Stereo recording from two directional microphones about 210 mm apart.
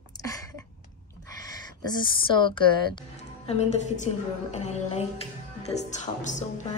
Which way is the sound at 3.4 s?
35° left (ahead or behind).